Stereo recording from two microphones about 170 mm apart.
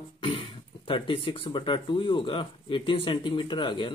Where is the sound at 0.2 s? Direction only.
30° left (ahead or behind).